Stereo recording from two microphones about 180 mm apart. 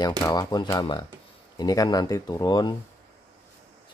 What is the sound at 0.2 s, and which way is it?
Speech, 20° left (ahead or behind).